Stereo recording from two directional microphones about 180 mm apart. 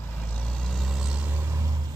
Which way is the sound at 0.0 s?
10° left (ahead or behind).